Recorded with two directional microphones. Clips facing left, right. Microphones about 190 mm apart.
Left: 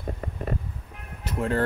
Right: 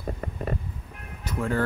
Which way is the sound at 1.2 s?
25° left (ahead or behind).